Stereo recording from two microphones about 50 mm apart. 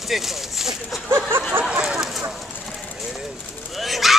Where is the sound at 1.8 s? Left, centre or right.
Centre.